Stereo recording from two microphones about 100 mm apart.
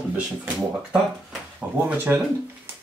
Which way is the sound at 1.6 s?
15° right (ahead or behind).